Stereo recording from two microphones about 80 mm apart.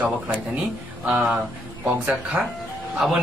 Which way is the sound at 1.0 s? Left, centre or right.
Centre.